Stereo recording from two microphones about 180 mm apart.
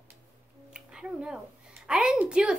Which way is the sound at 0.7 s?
5° right (ahead or behind).